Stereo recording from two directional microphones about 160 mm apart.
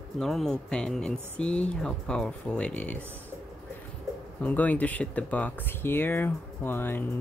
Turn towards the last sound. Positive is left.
turn(degrees=15)  # may be behind; listen again after turning